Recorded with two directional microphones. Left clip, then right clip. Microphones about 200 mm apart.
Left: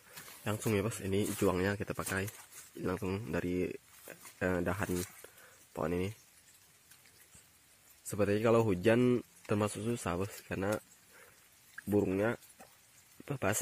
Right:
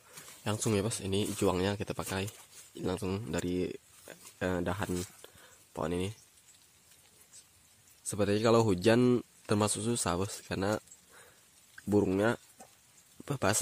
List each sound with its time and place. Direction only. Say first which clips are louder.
0.4 s speech: right 2 dB; 10° right (ahead or behind)
5.2 s a sound: right 1 dB; centre (ahead or behind)
8.1 s speech: right 2 dB; 5° right (ahead or behind)
11.9 s speech: right 3 dB; 20° right (ahead or behind)